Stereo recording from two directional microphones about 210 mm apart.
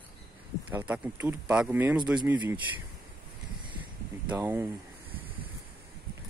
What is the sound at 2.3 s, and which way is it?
Speech, 20° right (ahead or behind).